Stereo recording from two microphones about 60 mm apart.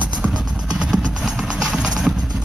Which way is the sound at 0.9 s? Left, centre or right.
Centre.